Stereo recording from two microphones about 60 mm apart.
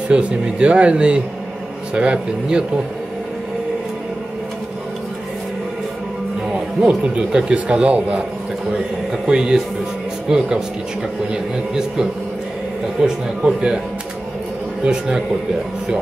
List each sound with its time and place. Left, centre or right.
0.1 s speech: centre
6.8 s speech: centre
9.2 s speech: centre
13.0 s speech: centre
14.8 s speech: centre